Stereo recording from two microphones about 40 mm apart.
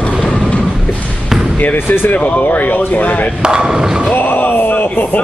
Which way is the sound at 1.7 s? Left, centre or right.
Left.